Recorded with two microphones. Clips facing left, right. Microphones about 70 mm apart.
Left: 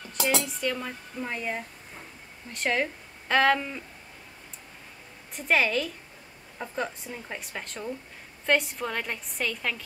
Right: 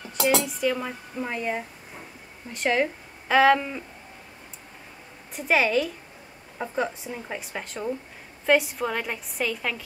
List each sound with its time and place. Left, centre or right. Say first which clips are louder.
0.1 s a woman's voice: right 4 dB; centre
5.3 s a woman's voice: right 3 dB; centre